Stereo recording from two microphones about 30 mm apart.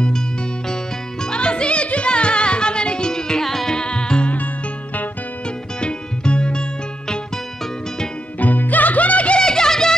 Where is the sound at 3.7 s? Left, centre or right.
Left.